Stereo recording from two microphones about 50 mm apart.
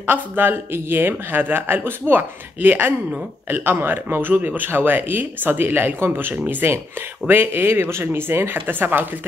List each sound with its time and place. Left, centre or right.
0.0 s speech: right